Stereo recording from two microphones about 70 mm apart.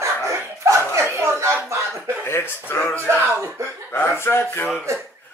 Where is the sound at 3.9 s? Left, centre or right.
Left.